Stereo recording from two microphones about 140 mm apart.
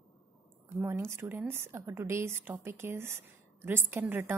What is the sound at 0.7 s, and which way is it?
A woman's voice, 15° right (ahead or behind).